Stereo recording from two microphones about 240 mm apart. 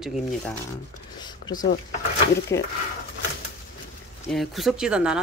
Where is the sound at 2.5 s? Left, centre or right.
Left.